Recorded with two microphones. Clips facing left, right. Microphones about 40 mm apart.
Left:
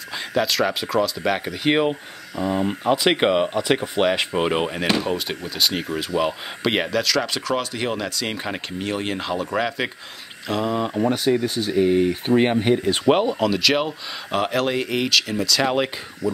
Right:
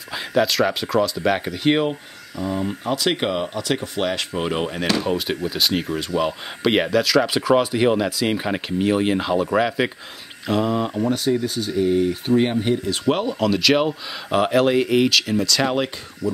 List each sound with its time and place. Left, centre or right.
0.3 s speech: centre
2.4 s speech: left; by 10.9 s centre
11.0 s speech: centre
13.1 s speech: centre
13.4 s speech: centre